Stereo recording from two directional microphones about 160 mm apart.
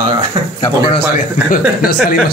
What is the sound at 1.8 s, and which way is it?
Speech, 70° left (ahead or behind).